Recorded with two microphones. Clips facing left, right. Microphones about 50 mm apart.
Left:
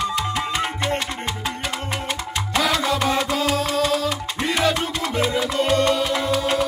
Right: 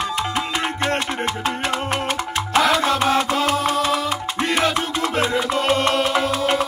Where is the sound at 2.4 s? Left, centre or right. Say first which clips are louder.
Right 4 dB; centre.